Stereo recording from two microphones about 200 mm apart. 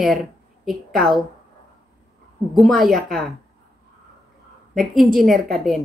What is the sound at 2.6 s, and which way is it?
Speech, centre (ahead or behind).